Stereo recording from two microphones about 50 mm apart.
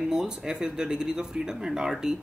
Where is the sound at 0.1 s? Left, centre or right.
Centre.